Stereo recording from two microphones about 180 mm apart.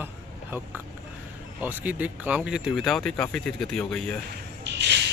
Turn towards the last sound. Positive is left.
turn(degrees=-75)  # may be behind; listen again after turning